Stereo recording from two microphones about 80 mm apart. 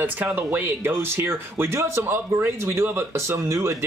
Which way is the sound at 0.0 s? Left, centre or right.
Right.